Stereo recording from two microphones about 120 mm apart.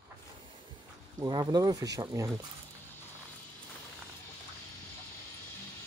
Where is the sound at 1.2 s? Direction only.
35° right (ahead or behind).